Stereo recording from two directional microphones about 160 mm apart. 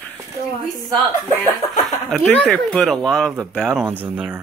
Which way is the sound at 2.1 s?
5° left (ahead or behind).